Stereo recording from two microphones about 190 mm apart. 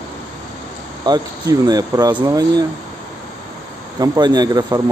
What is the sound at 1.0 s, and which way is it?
Speech, 20° right (ahead or behind).